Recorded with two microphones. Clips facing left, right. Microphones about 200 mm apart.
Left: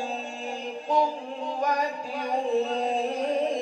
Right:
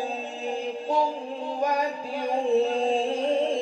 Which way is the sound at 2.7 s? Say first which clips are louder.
Right 3 dB; 30° right (ahead or behind).